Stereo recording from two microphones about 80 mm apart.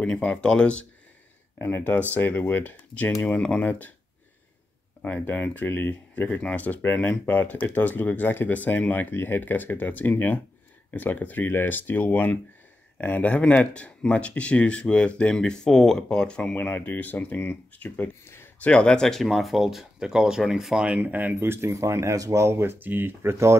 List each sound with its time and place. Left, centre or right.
0.0 s speech: centre
1.6 s speech: left
5.0 s speech: left
16.5 s speech: left
18.2 s a sound: left
18.6 s speech: centre
21.0 s speech: right